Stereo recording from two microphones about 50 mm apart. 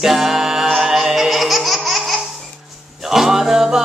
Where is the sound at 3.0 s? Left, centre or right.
Centre.